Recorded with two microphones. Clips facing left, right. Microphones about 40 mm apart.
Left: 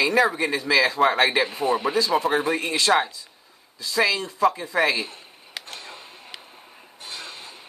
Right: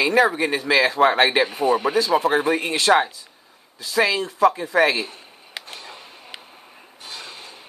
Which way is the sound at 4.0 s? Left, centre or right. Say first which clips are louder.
Right 3 dB; right.